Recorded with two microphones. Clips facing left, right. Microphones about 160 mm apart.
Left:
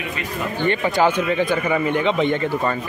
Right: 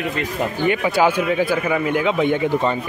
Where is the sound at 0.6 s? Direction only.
10° right (ahead or behind).